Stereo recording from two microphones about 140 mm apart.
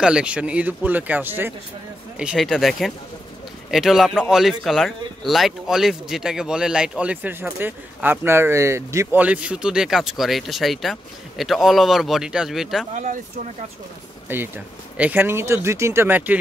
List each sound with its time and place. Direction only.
0.0 s speech: 5° right (ahead or behind)
2.1 s speech: 5° right (ahead or behind)
12.9 s speech: 65° right (ahead or behind)
15.0 s speech: 10° right (ahead or behind)